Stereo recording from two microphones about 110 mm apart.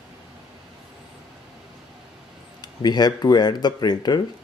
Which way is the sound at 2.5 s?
40° left (ahead or behind).